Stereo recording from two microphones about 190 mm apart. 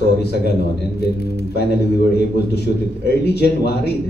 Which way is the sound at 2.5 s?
60° left (ahead or behind).